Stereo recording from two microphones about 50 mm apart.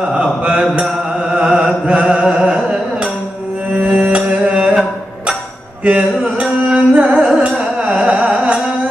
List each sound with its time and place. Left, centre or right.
0.0 s mantra: centre
4.1 s music: right
5.9 s music: centre
7.2 s music: centre